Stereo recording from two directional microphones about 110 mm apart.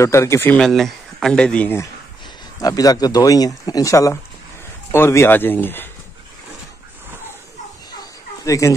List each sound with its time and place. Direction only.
0.0 s speech: 25° left (ahead or behind)
0.6 s speech: 5° left (ahead or behind)
2.6 s speech: 35° left (ahead or behind); by 5.9 s 20° left (ahead or behind)
8.5 s speech: 30° left (ahead or behind)